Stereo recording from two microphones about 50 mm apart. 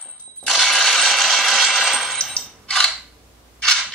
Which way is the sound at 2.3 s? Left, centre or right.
Centre.